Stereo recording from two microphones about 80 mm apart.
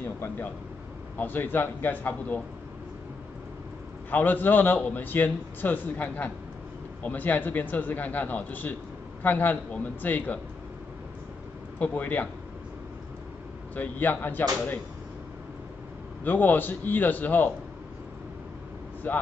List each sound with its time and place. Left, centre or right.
0.0 s a sound: left
1.1 s a man's voice: left
4.1 s a man's voice: left
11.8 s a man's voice: left
13.7 s a man's voice: left
16.3 s a man's voice: left
19.1 s a man's voice: left